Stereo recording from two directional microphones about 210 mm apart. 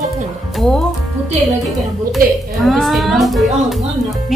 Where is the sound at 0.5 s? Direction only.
Centre (ahead or behind).